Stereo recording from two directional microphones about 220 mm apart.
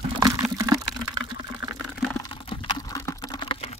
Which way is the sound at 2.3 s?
25° left (ahead or behind).